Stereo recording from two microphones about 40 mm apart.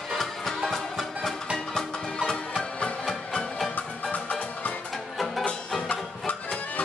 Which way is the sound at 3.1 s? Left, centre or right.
Left.